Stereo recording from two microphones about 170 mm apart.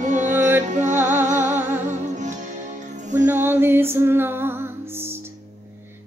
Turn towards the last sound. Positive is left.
turn(degrees=-15)  # may be behind; listen again after turning